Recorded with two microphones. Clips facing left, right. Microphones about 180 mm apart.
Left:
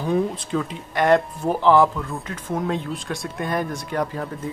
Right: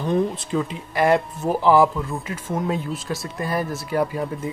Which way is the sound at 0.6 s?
5° right (ahead or behind).